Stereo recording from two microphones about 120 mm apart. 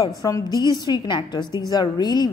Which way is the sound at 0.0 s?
35° left (ahead or behind).